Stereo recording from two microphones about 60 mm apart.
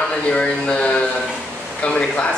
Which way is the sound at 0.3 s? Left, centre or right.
Centre.